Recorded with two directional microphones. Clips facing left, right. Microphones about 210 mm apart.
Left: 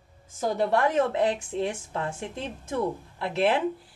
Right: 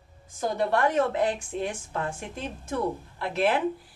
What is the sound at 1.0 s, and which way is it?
Speech, 25° left (ahead or behind).